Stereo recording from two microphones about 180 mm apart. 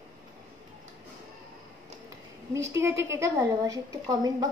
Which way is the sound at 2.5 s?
15° right (ahead or behind).